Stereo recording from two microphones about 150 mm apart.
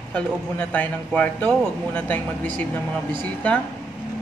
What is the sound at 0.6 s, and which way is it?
A man's voice, 10° left (ahead or behind).